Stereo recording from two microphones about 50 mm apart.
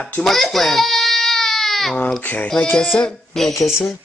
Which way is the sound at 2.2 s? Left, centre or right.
Left.